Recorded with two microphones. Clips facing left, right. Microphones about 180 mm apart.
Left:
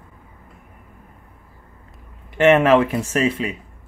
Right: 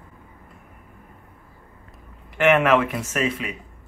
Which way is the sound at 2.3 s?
30° left (ahead or behind).